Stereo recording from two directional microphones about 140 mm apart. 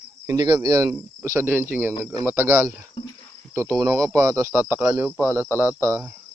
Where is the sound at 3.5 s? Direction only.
20° right (ahead or behind).